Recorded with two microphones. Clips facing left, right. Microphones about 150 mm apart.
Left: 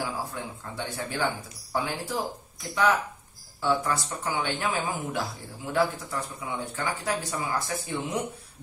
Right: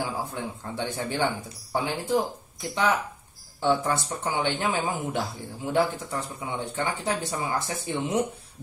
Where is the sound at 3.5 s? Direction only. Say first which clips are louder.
Right 2 dB; 25° right (ahead or behind).